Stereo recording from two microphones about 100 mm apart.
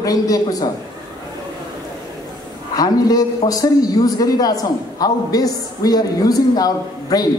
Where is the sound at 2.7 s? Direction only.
40° left (ahead or behind).